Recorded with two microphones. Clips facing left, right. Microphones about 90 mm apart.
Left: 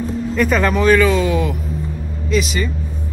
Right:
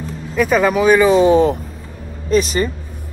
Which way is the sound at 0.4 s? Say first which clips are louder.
Right 3 dB; 5° right (ahead or behind).